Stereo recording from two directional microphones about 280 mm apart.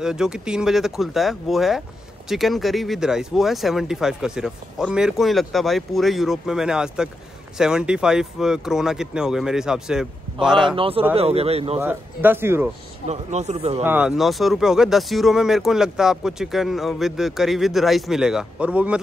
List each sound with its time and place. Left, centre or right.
0.0 s speech: centre
10.8 s speech: centre
11.8 s speech: centre
13.0 s speech: right
13.8 s speech: centre